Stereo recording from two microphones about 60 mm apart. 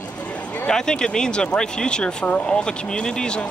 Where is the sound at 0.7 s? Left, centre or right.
Centre.